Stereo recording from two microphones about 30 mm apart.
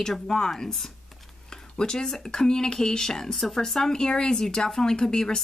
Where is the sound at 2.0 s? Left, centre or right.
Centre.